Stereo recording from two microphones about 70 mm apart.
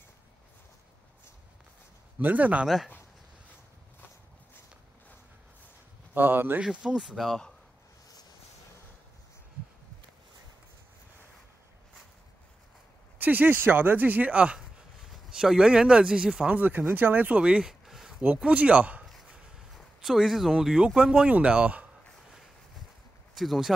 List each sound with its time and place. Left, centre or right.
2.1 s speech: right
2.6 s speech: centre
6.1 s speech: right
6.6 s speech: centre
13.2 s speech: right; by 18.1 s centre
18.2 s speech: right
20.0 s speech: centre
23.3 s speech: centre